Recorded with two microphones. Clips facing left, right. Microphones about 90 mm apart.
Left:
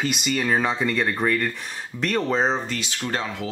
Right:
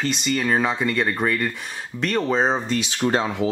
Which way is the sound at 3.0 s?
30° right (ahead or behind).